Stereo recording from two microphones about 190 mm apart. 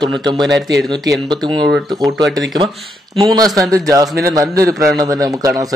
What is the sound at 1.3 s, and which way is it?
Speech, 25° right (ahead or behind).